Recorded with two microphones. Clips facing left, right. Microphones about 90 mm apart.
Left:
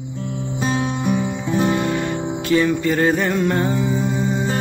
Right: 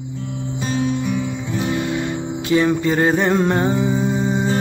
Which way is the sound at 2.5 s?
20° right (ahead or behind).